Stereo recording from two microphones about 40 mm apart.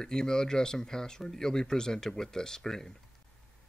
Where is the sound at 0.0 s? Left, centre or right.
Centre.